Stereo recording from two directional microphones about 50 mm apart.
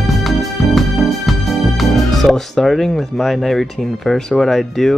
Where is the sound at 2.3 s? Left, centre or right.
Centre.